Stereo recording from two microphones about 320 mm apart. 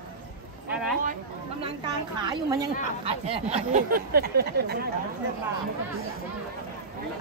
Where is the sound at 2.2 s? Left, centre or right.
Centre; by 4.7 s right.